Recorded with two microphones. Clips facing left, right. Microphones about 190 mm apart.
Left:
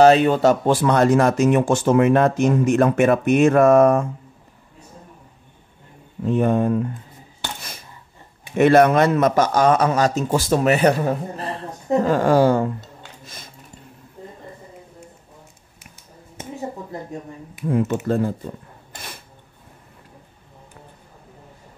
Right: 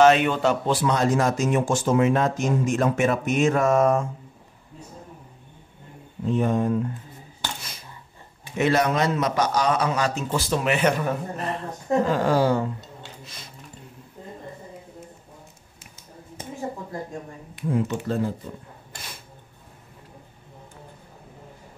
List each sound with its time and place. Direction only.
0.0 s speech: 35° left (ahead or behind); by 4.0 s 60° left (ahead or behind)
6.2 s speech: 55° left (ahead or behind)
8.5 s a man's voice: 55° left (ahead or behind); by 11.6 s 30° left (ahead or behind)
12.1 s a man's voice: 50° left (ahead or behind)
17.6 s a man's voice: 60° left (ahead or behind)